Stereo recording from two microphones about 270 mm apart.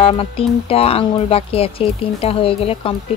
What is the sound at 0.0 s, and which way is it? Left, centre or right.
Speech, left.